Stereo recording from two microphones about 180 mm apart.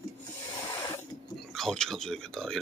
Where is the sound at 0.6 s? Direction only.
20° left (ahead or behind).